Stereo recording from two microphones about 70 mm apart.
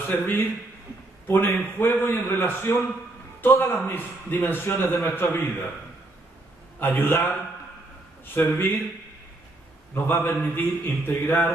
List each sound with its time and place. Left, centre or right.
0.0 s a man's voice: left
6.8 s a man's voice: left
8.4 s a man's voice: left
9.9 s a man's voice: left